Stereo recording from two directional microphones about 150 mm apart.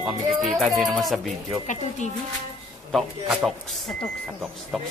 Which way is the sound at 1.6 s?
55° left (ahead or behind).